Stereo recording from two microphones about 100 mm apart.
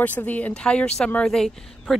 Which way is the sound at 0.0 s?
15° left (ahead or behind).